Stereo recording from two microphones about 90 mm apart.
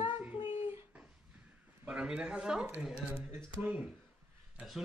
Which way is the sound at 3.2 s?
25° right (ahead or behind).